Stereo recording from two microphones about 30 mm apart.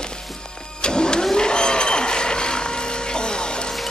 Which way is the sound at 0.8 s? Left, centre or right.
Left.